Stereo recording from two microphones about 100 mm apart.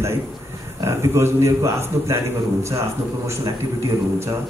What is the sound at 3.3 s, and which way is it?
A man's voice, 30° right (ahead or behind).